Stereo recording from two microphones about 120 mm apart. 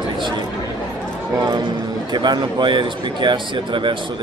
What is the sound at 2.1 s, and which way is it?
Speech, 40° right (ahead or behind).